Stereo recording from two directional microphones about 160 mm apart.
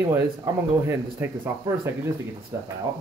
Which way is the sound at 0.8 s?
15° right (ahead or behind).